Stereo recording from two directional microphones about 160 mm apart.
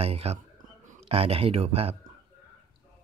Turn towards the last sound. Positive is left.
turn(degrees=-40)  # may be behind; listen again after turning